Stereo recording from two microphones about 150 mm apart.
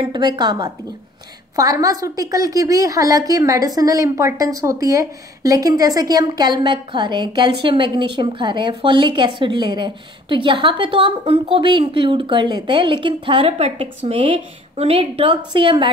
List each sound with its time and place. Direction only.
0.0 s a woman's voice: 30° right (ahead or behind)